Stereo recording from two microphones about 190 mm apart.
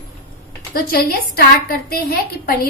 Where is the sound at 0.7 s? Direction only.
50° left (ahead or behind).